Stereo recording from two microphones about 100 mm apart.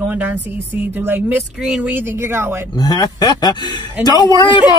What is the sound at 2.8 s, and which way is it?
Speech, 40° left (ahead or behind).